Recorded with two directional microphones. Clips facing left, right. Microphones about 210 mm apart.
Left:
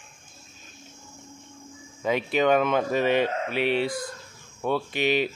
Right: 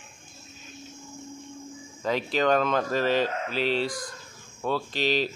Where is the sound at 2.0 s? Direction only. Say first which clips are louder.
Left 2 dB; 5° left (ahead or behind).